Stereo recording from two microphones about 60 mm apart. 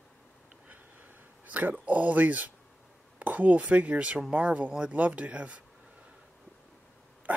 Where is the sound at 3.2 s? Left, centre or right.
Right.